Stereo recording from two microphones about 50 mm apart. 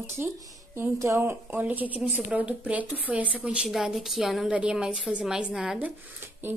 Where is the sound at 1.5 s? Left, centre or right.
Right.